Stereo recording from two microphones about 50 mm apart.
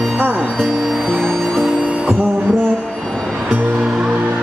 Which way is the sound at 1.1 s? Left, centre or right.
Centre.